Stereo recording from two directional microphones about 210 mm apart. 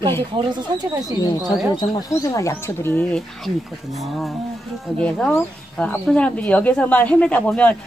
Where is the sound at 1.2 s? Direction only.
20° left (ahead or behind).